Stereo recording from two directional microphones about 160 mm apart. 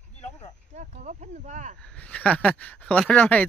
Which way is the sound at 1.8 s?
5° left (ahead or behind).